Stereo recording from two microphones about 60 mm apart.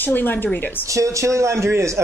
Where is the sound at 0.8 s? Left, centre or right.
Right.